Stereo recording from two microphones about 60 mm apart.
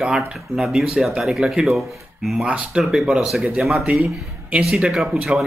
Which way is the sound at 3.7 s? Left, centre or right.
Right.